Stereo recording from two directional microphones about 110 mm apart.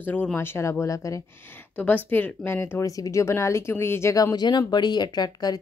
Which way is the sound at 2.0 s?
15° left (ahead or behind).